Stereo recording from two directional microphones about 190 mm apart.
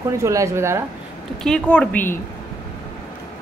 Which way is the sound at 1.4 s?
5° left (ahead or behind).